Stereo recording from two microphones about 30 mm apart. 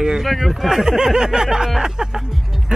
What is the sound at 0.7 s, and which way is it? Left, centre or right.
Speech, centre.